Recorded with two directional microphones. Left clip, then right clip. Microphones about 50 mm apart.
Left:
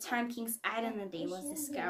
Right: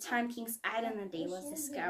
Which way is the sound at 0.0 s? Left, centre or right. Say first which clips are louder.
Right 1 dB; left.